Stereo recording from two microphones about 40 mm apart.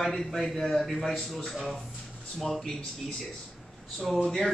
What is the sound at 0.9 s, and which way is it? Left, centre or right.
Speech, centre.